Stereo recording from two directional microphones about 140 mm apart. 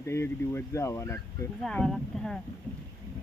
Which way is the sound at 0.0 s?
20° left (ahead or behind).